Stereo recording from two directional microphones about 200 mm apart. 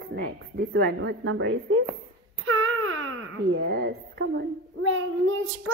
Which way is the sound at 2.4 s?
90° right.